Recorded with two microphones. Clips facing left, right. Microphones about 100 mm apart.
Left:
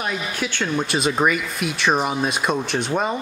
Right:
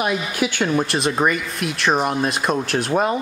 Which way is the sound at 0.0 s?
10° right (ahead or behind).